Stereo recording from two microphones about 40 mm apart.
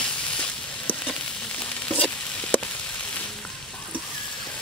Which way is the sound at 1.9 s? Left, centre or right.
Left.